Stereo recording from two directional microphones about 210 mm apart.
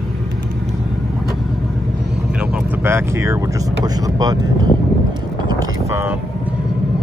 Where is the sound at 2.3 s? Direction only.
5° right (ahead or behind).